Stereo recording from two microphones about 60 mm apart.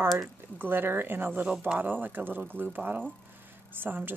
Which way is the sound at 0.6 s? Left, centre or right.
Right.